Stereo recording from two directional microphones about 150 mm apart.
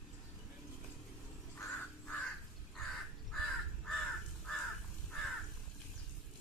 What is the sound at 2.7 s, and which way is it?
Crow, centre (ahead or behind).